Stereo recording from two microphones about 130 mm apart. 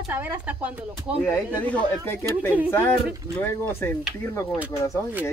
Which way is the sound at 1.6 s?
15° left (ahead or behind).